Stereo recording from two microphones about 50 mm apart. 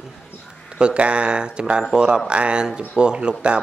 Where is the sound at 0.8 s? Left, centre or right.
Right.